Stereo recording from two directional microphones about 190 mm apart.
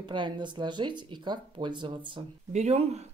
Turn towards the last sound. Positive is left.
turn(degrees=-35)  # may be behind; listen again after turning